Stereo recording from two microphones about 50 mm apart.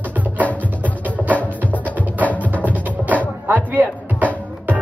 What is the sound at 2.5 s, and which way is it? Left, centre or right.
Music, right.